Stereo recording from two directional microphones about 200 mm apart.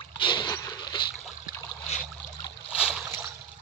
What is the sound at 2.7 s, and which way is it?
Boat, 5° right (ahead or behind).